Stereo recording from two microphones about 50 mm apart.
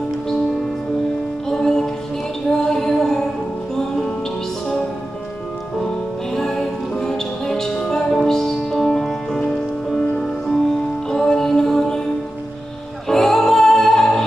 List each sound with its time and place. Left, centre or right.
1.5 s music: centre
6.3 s music: centre
13.1 s music: centre